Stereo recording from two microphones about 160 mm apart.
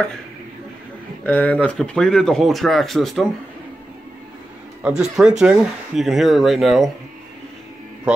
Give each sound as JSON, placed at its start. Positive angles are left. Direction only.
{"t": 1.2, "sound": "speech", "side_deg": 10}
{"t": 4.8, "sound": "speech", "side_deg": -5}